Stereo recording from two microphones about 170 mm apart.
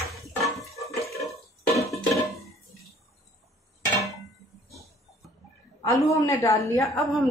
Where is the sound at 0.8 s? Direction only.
20° left (ahead or behind).